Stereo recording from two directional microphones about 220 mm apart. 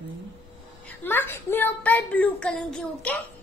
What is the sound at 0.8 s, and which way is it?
A woman's voice, 10° left (ahead or behind).